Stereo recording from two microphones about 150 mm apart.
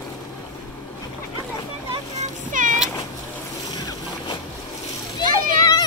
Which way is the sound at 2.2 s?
60° right (ahead or behind).